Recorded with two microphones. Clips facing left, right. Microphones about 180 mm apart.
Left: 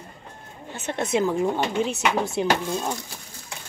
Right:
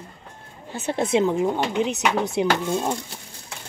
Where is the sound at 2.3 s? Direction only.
25° right (ahead or behind).